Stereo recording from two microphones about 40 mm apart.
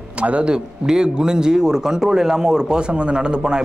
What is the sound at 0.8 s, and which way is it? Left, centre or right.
A man's voice, centre.